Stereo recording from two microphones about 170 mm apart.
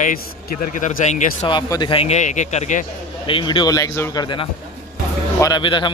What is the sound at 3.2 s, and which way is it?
A man's voice, 30° left (ahead or behind).